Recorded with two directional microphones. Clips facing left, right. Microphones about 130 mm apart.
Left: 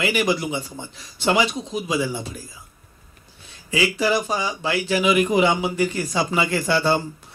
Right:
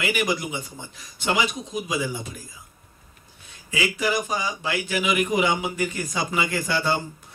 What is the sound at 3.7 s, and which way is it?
A man's voice, 30° left (ahead or behind).